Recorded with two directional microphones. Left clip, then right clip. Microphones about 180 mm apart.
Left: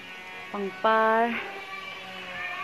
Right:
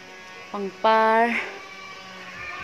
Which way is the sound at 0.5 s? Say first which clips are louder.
Right 4 dB; 10° right (ahead or behind).